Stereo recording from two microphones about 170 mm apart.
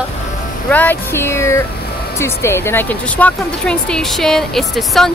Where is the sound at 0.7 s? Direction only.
10° left (ahead or behind).